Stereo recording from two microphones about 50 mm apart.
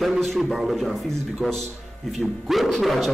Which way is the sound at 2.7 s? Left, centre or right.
Centre.